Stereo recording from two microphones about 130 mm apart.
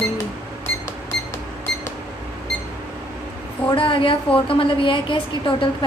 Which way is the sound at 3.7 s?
40° left (ahead or behind).